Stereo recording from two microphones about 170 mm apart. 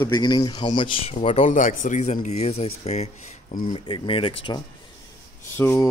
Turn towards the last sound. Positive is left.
turn(degrees=10)  # may be behind; listen again after turning